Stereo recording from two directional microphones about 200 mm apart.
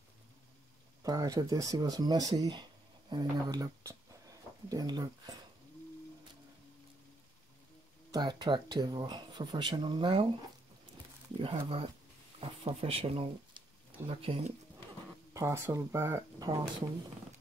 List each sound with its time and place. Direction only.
1.0 s speech: 20° right (ahead or behind)
8.1 s speech: 20° right (ahead or behind)
11.3 s speech: 30° right (ahead or behind)
15.3 s speech: 15° right (ahead or behind)